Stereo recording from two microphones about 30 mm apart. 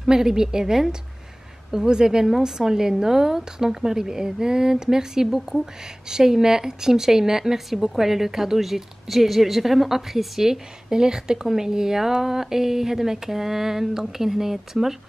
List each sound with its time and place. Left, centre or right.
0.0 s a woman's voice: centre